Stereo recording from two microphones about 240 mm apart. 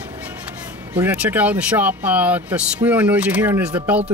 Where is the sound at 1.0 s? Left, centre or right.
Centre.